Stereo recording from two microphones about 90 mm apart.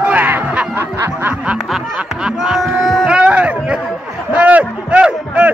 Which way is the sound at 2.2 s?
5° right (ahead or behind).